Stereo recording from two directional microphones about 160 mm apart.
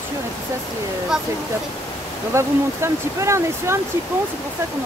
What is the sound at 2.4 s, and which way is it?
Speech, 15° right (ahead or behind).